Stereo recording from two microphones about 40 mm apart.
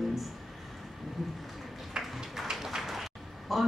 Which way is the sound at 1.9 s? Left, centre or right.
Centre.